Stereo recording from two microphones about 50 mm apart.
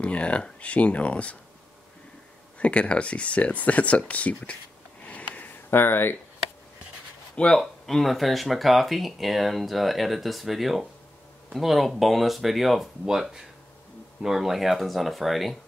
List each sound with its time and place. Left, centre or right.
0.0 s speech: left
2.6 s speech: left
5.0 s a sound: left
5.7 s speech: left
7.6 s speech: centre